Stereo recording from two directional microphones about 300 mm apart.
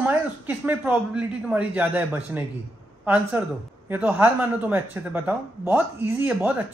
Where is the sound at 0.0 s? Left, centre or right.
Centre.